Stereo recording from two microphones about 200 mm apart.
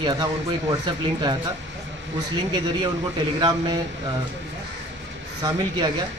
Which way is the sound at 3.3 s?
20° right (ahead or behind).